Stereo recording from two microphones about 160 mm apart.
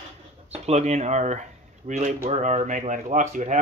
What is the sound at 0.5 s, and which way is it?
Speech, 45° right (ahead or behind).